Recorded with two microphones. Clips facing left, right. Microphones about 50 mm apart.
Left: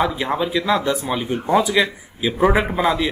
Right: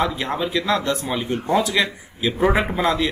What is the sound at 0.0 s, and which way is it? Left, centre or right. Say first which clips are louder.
Speech: left 2 dB; centre.